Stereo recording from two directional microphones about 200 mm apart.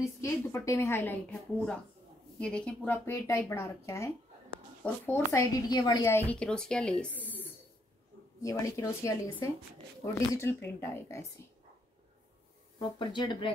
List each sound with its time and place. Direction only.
0.2 s a woman's voice: 15° left (ahead or behind)
2.4 s a woman's voice: 5° left (ahead or behind)
12.7 s speech: 20° left (ahead or behind)